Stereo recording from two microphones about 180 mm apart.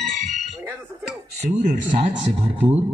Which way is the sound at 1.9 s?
30° right (ahead or behind).